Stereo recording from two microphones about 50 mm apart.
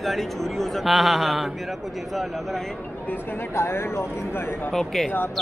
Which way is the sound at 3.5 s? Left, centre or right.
Left.